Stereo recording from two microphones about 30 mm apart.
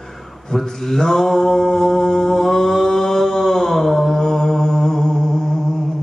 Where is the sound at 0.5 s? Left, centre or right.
Centre.